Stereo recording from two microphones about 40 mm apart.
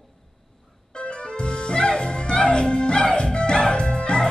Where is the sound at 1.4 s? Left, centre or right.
Left.